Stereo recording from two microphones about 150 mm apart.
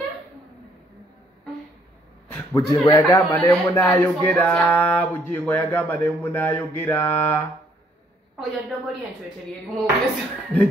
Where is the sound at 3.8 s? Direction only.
10° left (ahead or behind).